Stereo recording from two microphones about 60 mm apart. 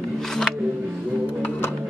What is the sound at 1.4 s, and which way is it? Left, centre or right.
Music, left.